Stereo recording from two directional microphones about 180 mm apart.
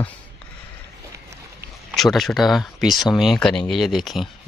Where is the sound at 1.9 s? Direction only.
Centre (ahead or behind).